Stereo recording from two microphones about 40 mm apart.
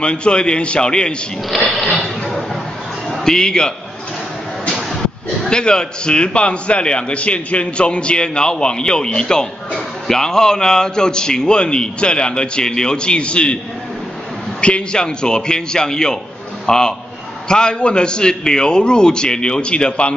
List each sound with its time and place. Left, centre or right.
0.0 s a man's voice: left
3.1 s a man's voice: centre
5.5 s a man's voice: left
14.6 s a man's voice: left